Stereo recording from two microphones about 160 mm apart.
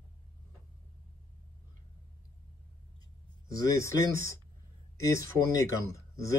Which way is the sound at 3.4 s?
20° left (ahead or behind).